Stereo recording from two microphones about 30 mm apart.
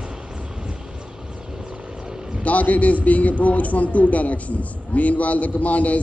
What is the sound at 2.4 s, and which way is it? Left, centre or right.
A man's voice, left.